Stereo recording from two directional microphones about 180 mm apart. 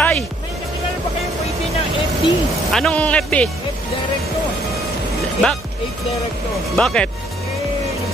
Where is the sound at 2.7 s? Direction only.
5° left (ahead or behind).